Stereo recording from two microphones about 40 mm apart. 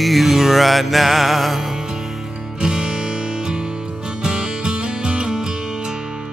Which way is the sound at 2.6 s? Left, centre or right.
Right.